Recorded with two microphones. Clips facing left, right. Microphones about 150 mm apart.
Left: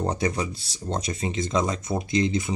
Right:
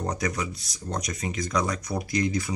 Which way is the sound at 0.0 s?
30° left (ahead or behind).